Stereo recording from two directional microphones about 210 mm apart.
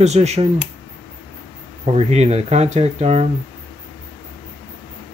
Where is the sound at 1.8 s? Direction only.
30° right (ahead or behind).